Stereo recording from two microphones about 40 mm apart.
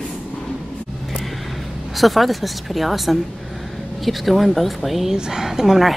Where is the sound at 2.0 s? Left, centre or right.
Centre.